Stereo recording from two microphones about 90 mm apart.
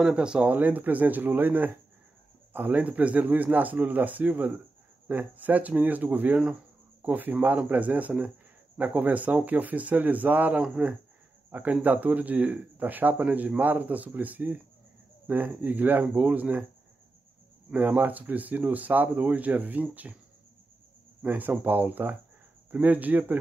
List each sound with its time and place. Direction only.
0.0 s speech: 10° right (ahead or behind)
17.7 s speech: 20° right (ahead or behind)
21.2 s speech: 20° right (ahead or behind)